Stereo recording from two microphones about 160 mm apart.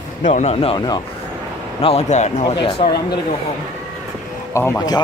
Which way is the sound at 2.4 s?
30° left (ahead or behind).